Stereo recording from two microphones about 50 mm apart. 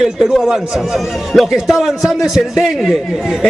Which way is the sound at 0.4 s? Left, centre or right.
Centre.